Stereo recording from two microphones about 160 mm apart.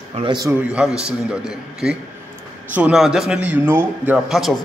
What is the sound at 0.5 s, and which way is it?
A man's voice, 5° right (ahead or behind).